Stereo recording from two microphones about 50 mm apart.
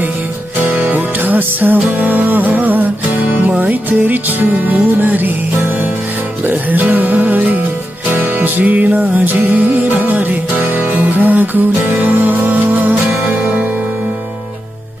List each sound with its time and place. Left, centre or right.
0.7 s music: right